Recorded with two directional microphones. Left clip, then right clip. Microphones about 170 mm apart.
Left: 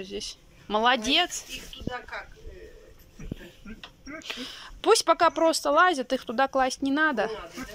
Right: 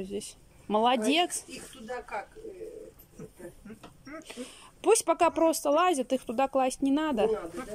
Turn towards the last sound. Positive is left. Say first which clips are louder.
# left 2 dB
turn(degrees=-15)  # may be behind; listen again after turning